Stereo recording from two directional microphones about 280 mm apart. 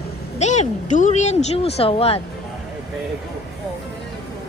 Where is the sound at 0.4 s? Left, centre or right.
Left.